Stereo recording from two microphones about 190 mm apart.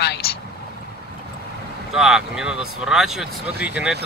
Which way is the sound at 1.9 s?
Centre (ahead or behind).